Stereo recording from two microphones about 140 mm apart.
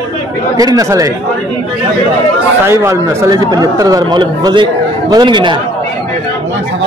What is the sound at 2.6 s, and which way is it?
A man's voice, 20° right (ahead or behind).